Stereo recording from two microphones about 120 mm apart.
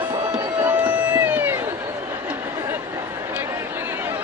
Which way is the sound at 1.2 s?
15° right (ahead or behind).